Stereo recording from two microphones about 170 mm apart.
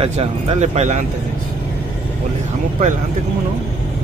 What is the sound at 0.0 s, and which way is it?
Speech, 40° right (ahead or behind).